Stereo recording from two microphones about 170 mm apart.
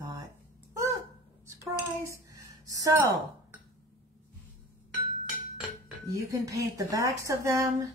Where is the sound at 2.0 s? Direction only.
20° right (ahead or behind).